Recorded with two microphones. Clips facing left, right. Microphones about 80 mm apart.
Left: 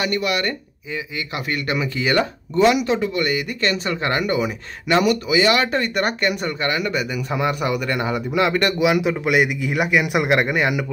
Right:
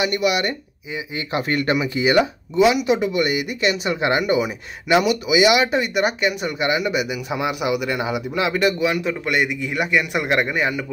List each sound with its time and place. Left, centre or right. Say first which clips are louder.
0.0 s speech: right 2 dB; centre
1.1 s speech: right 6 dB; right
1.8 s speech: right 1 dB; centre
2.9 s a man's voice: right 1 dB; centre